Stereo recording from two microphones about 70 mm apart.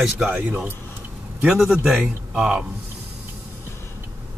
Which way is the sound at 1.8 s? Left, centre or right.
Centre.